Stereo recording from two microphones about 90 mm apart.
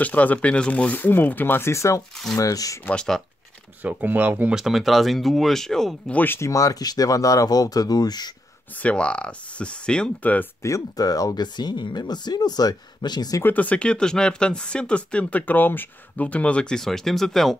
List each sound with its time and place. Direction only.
0.0 s speech: 15° left (ahead or behind); by 2.8 s 40° left (ahead or behind)
2.8 s speech: 10° left (ahead or behind)
3.8 s speech: 20° right (ahead or behind)
4.6 s speech: 5° right (ahead or behind)
6.1 s speech: 25° left (ahead or behind)
6.5 s speech: 40° left (ahead or behind)
8.7 s speech: 15° left (ahead or behind)
10.6 s speech: 40° left (ahead or behind)
11.4 s speech: 55° left (ahead or behind)
13.4 s speech: 20° left (ahead or behind)